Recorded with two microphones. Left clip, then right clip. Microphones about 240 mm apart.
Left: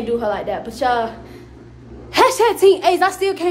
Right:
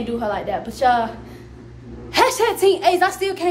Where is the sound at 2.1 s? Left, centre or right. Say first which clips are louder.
Left 3 dB; centre.